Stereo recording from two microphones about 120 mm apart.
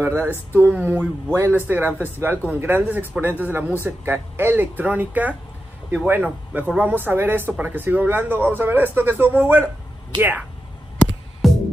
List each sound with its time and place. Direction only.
0.0 s speech: 20° right (ahead or behind)
11.4 s music: centre (ahead or behind)